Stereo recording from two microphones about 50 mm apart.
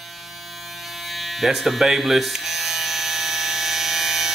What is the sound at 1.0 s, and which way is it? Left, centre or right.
Electric shaver, centre.